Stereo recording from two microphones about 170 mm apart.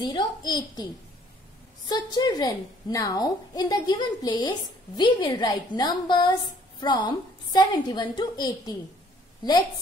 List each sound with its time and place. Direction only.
0.0 s a woman's voice: 25° left (ahead or behind)
1.9 s a woman's voice: 25° left (ahead or behind)